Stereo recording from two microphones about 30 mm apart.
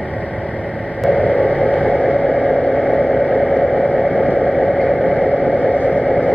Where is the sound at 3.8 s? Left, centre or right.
Left.